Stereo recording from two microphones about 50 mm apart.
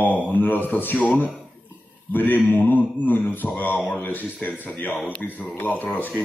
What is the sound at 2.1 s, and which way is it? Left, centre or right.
Mantra, left.